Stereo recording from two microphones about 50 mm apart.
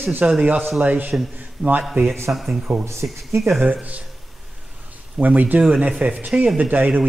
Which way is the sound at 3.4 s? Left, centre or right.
Centre.